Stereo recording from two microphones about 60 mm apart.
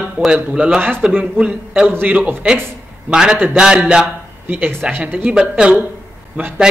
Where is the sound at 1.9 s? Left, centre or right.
Right.